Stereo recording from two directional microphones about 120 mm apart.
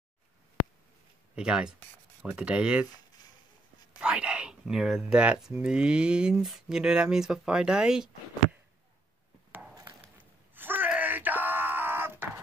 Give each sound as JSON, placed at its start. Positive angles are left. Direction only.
{"t": 1.3, "sound": "speech", "side_deg": -5}
{"t": 4.0, "sound": "speech", "side_deg": -10}
{"t": 10.1, "sound": "groan", "side_deg": -15}